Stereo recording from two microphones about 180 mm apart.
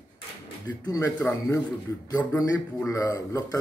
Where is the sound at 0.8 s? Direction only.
15° left (ahead or behind).